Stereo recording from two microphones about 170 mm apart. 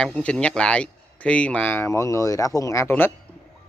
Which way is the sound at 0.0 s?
5° left (ahead or behind).